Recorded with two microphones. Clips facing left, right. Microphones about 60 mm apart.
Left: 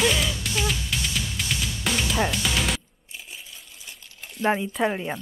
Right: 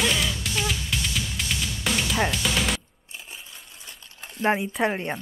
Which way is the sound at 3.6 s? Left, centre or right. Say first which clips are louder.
Even; right.